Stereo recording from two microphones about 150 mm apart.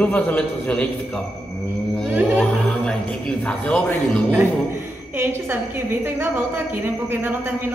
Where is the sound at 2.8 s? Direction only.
5° left (ahead or behind).